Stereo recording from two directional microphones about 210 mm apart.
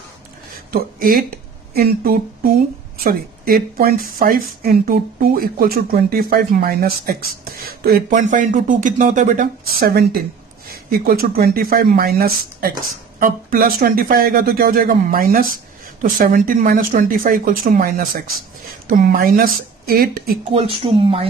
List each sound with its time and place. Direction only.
0.7 s speech: 45° right (ahead or behind)
20.5 s speech: 25° right (ahead or behind)